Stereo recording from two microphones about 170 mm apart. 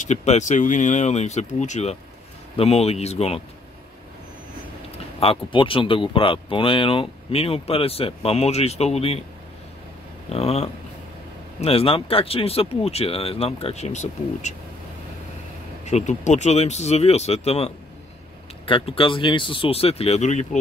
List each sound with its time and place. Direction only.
0.0 s speech: 40° left (ahead or behind)
4.9 s speech: 35° left (ahead or behind)
10.3 s speech: 35° left (ahead or behind)
15.8 s speech: 45° left (ahead or behind)